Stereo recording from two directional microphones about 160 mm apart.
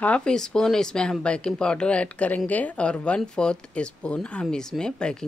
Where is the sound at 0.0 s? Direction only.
5° left (ahead or behind).